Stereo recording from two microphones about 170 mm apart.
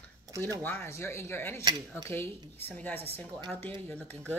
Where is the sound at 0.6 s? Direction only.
10° left (ahead or behind).